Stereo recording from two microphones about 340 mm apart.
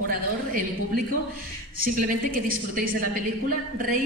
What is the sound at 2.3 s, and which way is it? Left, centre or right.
Speech, right.